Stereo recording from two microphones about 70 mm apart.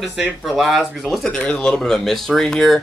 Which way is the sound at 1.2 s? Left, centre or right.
Centre.